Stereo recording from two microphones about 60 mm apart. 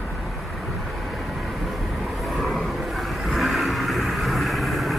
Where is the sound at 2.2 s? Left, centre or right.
Centre.